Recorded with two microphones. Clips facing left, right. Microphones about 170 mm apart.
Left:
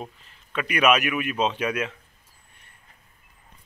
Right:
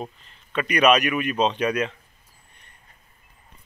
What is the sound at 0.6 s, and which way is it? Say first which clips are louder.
A man's voice: right 3 dB; 5° left (ahead or behind).